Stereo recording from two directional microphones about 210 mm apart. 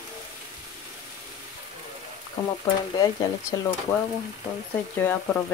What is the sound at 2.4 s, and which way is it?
Speech, 15° left (ahead or behind).